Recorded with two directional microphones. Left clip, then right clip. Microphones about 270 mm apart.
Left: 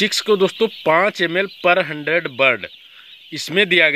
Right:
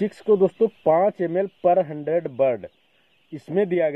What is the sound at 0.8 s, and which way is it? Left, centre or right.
Speech, left.